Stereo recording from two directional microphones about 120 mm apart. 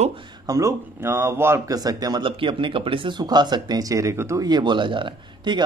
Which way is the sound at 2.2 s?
45° right (ahead or behind).